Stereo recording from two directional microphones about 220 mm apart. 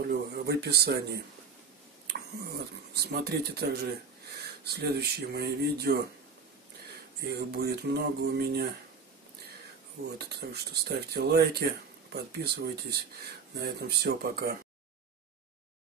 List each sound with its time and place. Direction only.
0.0 s speech: 45° right (ahead or behind)
7.2 s speech: 45° right (ahead or behind)
10.1 s speech: 45° right (ahead or behind)